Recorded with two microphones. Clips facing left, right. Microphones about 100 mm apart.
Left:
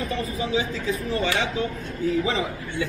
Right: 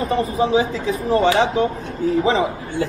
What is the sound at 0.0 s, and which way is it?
A woman's voice, 35° right (ahead or behind).